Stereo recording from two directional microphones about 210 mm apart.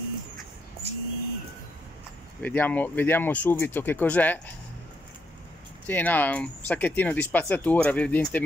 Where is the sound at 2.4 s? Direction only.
10° left (ahead or behind).